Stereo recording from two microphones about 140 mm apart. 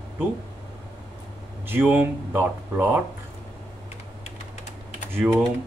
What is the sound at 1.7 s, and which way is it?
Speech, 15° right (ahead or behind).